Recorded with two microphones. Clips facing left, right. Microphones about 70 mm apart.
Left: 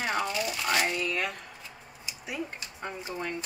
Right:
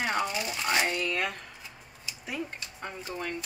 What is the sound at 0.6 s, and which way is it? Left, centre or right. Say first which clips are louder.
Speech: right 1 dB; centre.